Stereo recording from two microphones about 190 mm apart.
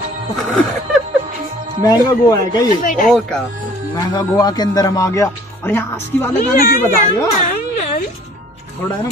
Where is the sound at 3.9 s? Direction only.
20° left (ahead or behind).